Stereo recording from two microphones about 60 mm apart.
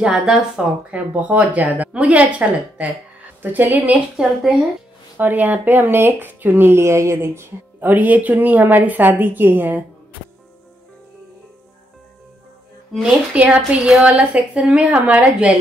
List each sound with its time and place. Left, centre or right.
0.0 s a woman's voice: centre; by 4.0 s right
4.2 s speech: centre
5.1 s speech: right
7.8 s speech: right
13.0 s a woman's voice: right